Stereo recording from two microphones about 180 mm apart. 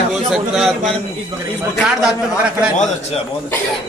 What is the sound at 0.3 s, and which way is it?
A man's voice, centre (ahead or behind).